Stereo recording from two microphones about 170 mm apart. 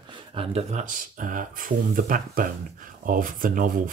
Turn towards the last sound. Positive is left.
turn(degrees=-50)  # may be behind; listen again after turning